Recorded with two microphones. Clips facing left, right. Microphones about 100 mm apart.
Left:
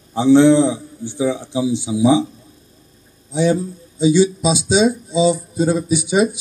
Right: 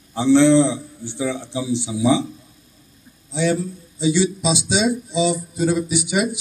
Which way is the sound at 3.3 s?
20° left (ahead or behind).